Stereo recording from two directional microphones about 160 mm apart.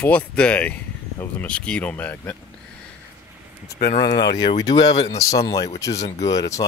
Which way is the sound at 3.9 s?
30° left (ahead or behind).